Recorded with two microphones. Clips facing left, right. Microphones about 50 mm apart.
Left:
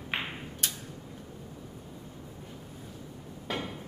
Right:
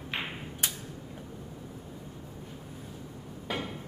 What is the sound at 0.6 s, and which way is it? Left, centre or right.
Creak, centre.